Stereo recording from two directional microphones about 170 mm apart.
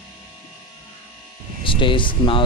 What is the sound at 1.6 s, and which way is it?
Speech, 30° left (ahead or behind).